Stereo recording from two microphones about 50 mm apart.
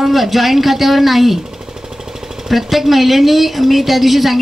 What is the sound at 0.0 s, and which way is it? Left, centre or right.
A woman's voice, centre.